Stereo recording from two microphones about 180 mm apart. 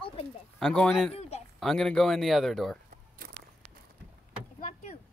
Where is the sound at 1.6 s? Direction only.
5° left (ahead or behind).